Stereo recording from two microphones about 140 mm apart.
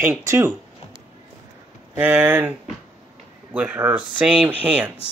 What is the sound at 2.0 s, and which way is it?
Speech, 10° right (ahead or behind).